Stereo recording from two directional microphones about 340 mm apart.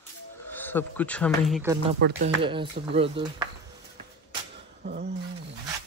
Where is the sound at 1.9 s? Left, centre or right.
Right.